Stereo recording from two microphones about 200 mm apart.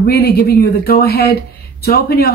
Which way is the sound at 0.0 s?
50° left (ahead or behind).